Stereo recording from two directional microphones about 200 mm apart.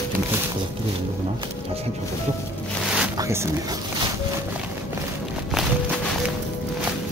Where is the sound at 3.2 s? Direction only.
15° right (ahead or behind).